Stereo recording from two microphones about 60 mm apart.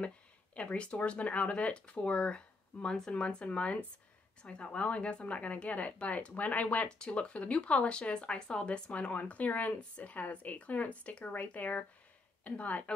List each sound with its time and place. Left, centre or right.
0.6 s speech: centre